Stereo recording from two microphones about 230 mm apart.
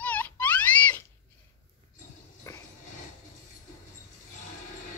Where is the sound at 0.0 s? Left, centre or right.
Centre.